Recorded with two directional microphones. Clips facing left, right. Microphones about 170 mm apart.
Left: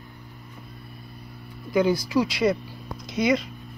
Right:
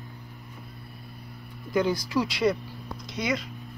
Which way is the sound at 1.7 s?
5° left (ahead or behind).